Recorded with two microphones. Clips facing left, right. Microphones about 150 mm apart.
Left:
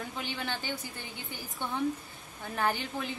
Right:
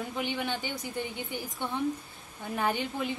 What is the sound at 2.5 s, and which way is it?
Speech, 15° right (ahead or behind).